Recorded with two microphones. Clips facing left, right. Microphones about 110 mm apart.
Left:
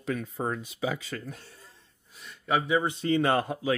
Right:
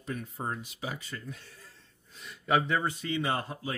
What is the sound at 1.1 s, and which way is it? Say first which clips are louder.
Speech: left 5 dB; 65° left (ahead or behind).